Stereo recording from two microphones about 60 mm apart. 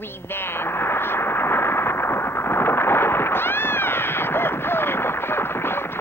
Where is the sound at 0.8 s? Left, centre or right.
Left.